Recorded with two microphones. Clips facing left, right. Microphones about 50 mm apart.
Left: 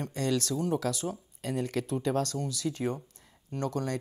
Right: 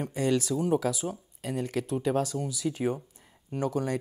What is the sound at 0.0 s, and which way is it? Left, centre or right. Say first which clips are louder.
Speech: right 3 dB; centre.